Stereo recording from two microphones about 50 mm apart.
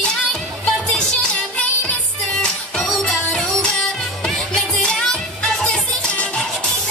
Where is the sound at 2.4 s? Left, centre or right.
Centre.